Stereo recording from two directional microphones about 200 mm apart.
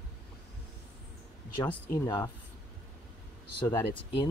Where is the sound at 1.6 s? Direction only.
20° left (ahead or behind).